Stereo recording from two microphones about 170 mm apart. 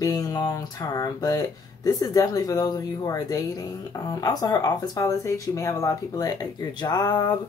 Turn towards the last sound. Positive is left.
turn(degrees=25)  # may be behind; listen again after turning